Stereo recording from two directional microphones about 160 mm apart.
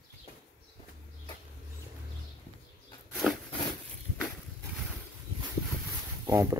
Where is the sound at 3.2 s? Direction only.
5° right (ahead or behind).